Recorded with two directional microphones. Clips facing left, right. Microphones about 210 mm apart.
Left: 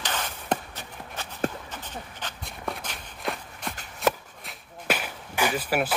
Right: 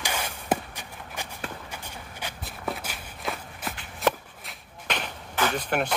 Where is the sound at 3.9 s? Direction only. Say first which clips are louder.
Even; centre (ahead or behind).